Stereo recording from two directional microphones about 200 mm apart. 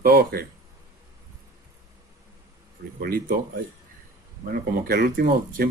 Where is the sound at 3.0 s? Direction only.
45° right (ahead or behind).